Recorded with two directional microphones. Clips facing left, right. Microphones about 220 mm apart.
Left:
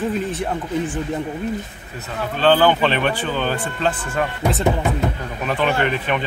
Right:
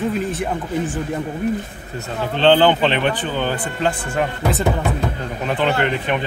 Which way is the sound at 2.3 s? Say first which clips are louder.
Right 2 dB; 25° right (ahead or behind).